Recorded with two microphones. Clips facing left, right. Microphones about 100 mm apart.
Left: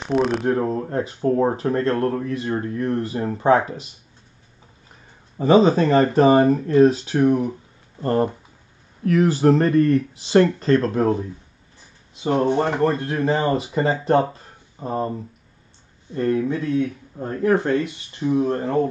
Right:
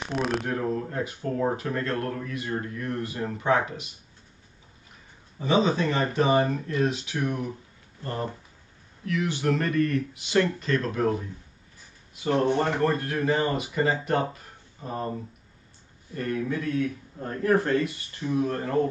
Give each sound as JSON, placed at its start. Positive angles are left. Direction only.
{"t": 0.0, "sound": "speech", "side_deg": 0}
{"t": 0.5, "sound": "speech", "side_deg": 35}
{"t": 5.4, "sound": "speech", "side_deg": 40}
{"t": 8.0, "sound": "speech", "side_deg": 50}
{"t": 16.1, "sound": "speech", "side_deg": 25}